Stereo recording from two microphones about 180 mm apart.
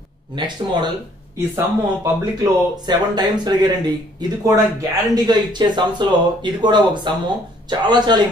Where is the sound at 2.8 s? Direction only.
25° right (ahead or behind).